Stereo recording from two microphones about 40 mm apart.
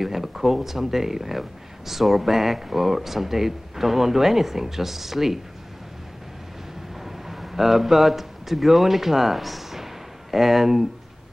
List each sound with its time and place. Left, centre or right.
0.0 s speech: centre
7.0 s speech: centre